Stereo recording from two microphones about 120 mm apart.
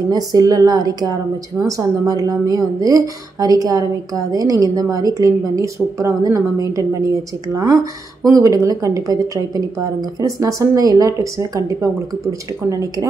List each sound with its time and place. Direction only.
0.1 s a woman's voice: 30° right (ahead or behind)
10.2 s a woman's voice: 25° right (ahead or behind)